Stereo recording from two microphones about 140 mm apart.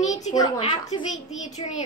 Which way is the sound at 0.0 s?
60° left (ahead or behind).